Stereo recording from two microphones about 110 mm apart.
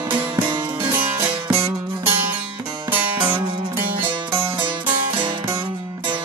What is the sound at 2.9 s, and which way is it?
Music, 15° right (ahead or behind).